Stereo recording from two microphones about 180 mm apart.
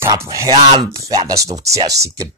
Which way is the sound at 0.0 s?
15° right (ahead or behind).